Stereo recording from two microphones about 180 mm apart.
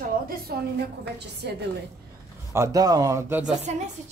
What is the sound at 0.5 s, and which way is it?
Speech, 60° right (ahead or behind).